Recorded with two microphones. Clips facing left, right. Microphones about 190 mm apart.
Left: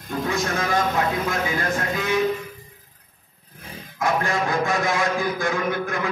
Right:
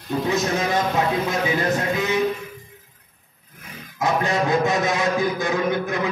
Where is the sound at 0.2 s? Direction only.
20° right (ahead or behind).